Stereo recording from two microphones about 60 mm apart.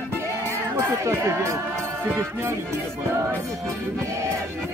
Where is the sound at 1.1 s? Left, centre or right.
Right.